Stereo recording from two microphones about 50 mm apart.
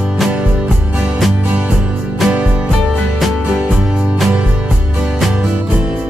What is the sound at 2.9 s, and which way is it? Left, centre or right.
Music, centre.